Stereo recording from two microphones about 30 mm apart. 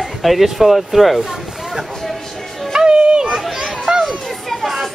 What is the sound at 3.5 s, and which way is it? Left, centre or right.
Chatter, centre.